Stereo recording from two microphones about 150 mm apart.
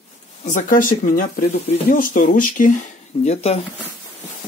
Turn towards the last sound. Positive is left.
turn(degrees=45)  # may be behind; listen again after turning